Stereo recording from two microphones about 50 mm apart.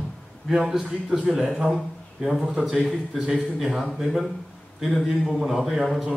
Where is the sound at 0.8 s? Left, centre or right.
Centre.